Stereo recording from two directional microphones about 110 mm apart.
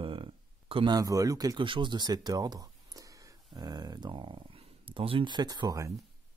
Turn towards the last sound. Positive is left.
turn(degrees=-35)  # may be behind; listen again after turning